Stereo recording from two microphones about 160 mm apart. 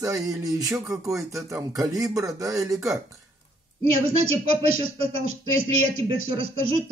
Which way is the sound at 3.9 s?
40° right (ahead or behind).